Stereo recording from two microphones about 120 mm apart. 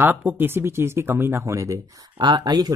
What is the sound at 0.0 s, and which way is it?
Speech, 15° right (ahead or behind).